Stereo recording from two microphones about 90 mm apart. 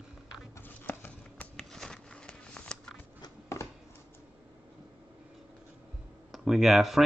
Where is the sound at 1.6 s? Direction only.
5° left (ahead or behind).